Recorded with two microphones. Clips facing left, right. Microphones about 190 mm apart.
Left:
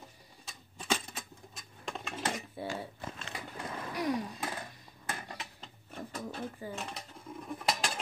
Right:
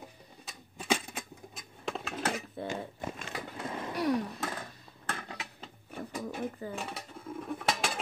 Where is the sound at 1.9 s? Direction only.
Centre (ahead or behind).